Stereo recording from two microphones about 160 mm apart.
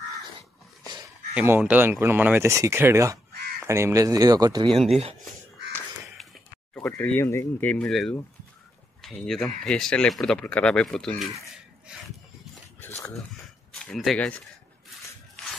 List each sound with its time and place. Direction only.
0.4 s dog: 25° right (ahead or behind)
1.3 s speech: 10° right (ahead or behind); by 4.8 s 30° right (ahead or behind)
6.7 s speech: 10° left (ahead or behind)
13.8 s speech: 5° left (ahead or behind)